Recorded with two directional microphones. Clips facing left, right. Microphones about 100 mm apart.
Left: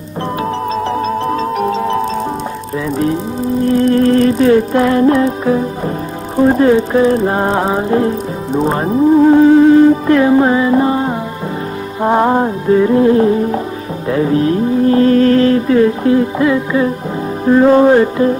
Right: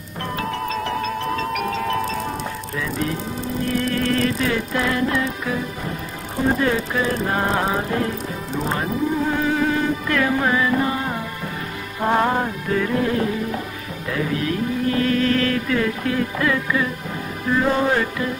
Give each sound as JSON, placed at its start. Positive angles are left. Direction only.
{"t": 0.7, "sound": "music", "side_deg": 30}
{"t": 3.6, "sound": "music", "side_deg": 35}
{"t": 8.5, "sound": "speech", "side_deg": 35}
{"t": 12.0, "sound": "music", "side_deg": 25}